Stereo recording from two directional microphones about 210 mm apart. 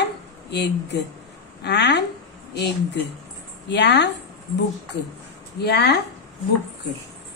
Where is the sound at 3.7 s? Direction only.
55° left (ahead or behind).